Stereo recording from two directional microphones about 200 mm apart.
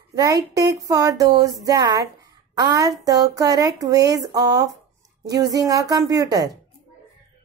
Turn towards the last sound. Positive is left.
turn(degrees=-20)  # may be behind; listen again after turning